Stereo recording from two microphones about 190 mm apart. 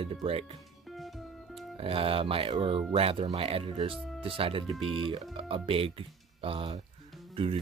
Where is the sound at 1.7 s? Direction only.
30° right (ahead or behind).